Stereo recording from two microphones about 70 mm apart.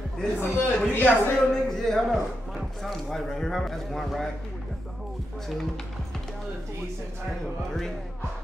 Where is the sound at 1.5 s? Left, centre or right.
Centre.